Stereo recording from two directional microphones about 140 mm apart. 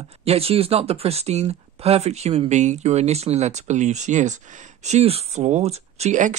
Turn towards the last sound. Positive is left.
turn(degrees=-60)  # may be behind; listen again after turning